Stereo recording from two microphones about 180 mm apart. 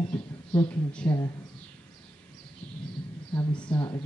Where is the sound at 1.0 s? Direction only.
25° left (ahead or behind).